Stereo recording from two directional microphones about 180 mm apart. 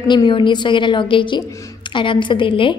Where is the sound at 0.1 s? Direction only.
25° left (ahead or behind).